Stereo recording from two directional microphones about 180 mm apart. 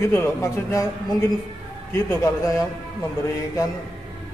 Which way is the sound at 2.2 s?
20° left (ahead or behind).